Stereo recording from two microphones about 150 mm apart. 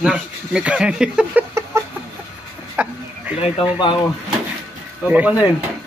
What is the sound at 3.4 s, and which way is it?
Speech, 35° left (ahead or behind).